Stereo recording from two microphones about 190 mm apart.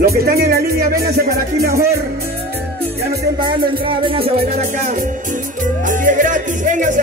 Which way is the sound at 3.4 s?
25° right (ahead or behind).